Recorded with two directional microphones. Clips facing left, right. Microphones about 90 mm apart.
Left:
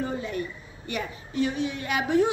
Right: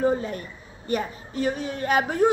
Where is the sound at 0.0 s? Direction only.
40° right (ahead or behind).